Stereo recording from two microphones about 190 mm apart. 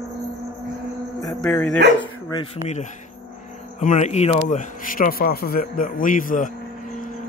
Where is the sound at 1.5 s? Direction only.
10° left (ahead or behind).